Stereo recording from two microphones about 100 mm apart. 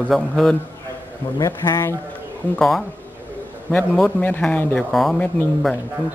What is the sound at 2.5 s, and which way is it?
Speech, centre (ahead or behind).